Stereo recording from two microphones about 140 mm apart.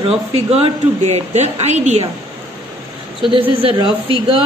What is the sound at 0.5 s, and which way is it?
A woman's voice, 50° right (ahead or behind).